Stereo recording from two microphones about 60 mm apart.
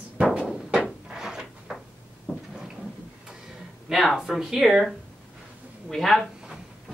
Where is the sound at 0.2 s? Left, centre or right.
Centre.